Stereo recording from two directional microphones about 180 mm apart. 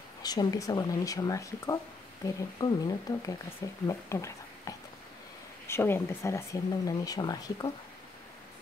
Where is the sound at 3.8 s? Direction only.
15° left (ahead or behind).